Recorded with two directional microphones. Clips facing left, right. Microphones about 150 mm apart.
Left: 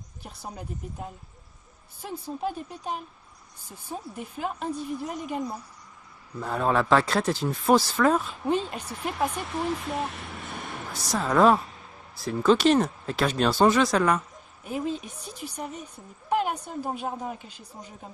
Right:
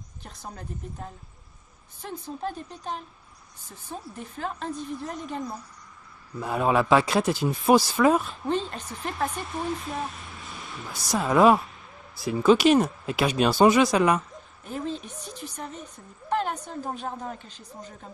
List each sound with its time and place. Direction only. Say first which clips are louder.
0.2 s a woman's voice: left 2 dB; 10° left (ahead or behind)
6.4 s speech: right 1 dB; 10° right (ahead or behind)
8.5 s a woman's voice: left 1 dB; 10° left (ahead or behind)
10.0 s vehicle: left 2 dB; 70° left (ahead or behind)
11.1 s speech: right 1 dB; 10° right (ahead or behind)
14.6 s a woman's voice: left 2 dB; 10° left (ahead or behind)